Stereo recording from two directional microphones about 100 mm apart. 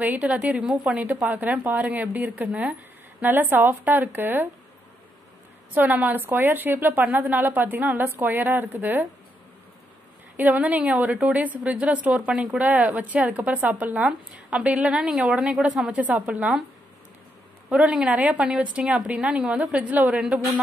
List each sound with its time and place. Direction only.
0.0 s a woman's voice: 15° right (ahead or behind)
5.8 s a woman's voice: 15° right (ahead or behind)
10.3 s speech: 15° right (ahead or behind)
17.6 s speech: 10° right (ahead or behind)